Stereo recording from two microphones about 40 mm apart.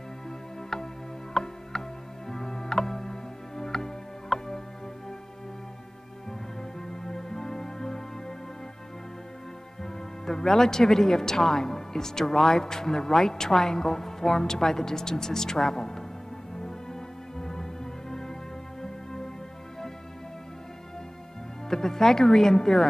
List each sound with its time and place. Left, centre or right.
1.3 s music: centre
6.9 s music: centre
10.2 s speech: centre
17.4 s music: centre
21.6 s speech: centre